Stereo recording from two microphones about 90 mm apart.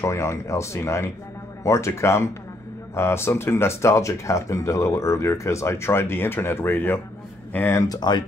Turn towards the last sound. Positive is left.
turn(degrees=35)  # may be behind; listen again after turning